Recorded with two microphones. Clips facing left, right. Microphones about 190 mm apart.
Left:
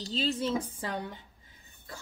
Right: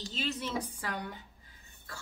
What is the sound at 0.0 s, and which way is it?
Speech, 35° left (ahead or behind).